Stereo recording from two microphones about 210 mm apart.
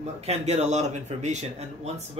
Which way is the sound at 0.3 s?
30° right (ahead or behind).